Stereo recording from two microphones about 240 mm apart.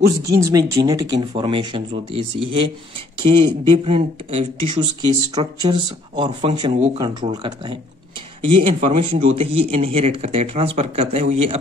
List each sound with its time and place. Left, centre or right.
0.3 s speech: centre